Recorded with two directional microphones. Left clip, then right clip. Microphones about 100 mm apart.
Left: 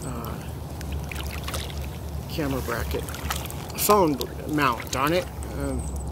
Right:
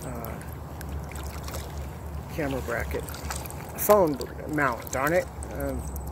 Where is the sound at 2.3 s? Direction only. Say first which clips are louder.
Left 1 dB; 35° left (ahead or behind).